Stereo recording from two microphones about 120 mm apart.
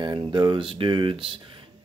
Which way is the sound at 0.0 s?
40° right (ahead or behind).